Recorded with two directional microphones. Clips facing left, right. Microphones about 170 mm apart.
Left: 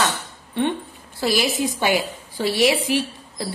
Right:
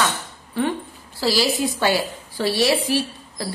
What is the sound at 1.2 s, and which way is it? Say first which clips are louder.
A woman's voice: right 1 dB; 20° left (ahead or behind).